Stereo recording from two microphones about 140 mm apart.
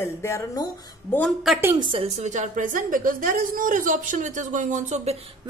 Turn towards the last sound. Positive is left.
turn(degrees=-50)  # may be behind; listen again after turning